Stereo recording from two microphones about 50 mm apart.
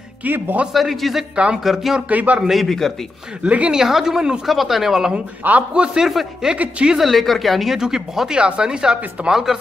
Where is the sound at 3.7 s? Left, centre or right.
Centre.